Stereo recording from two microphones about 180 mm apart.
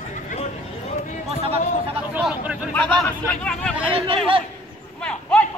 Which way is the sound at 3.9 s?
30° right (ahead or behind).